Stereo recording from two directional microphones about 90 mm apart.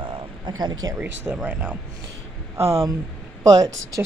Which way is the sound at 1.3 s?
15° right (ahead or behind).